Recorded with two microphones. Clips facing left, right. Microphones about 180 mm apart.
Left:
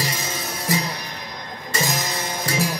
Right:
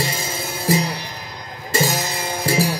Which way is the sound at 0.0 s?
30° right (ahead or behind).